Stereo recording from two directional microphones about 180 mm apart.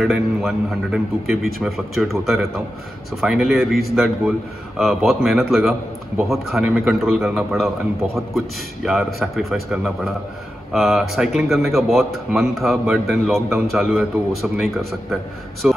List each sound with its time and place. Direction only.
0.0 s speech: centre (ahead or behind)